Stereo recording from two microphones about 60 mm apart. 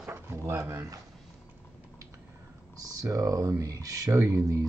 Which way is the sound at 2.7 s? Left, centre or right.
Right.